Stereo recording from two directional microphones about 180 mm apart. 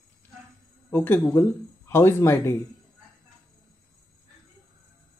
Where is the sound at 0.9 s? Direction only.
10° left (ahead or behind).